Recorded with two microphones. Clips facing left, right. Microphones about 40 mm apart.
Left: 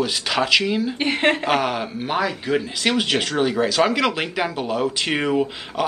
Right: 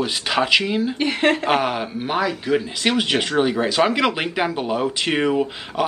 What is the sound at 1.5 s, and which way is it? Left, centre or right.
Speech, centre.